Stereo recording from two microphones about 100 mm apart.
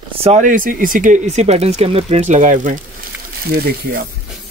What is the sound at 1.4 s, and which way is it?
Speech, 90° right.